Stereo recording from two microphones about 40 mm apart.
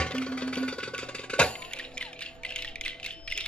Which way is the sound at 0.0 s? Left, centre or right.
Left.